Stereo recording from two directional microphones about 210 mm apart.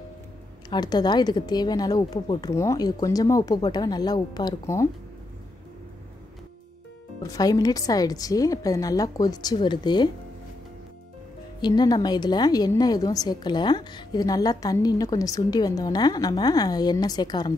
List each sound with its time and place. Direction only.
0.7 s a woman's voice: 20° left (ahead or behind)
7.2 s a woman's voice: 15° left (ahead or behind)
11.6 s a woman's voice: 20° left (ahead or behind)